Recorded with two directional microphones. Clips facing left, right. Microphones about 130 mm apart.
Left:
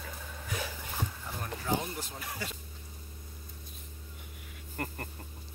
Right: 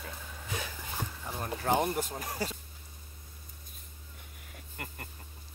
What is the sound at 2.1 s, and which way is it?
Speech, 40° right (ahead or behind).